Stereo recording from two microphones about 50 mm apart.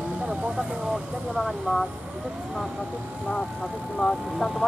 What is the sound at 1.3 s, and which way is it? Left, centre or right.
Speech, centre.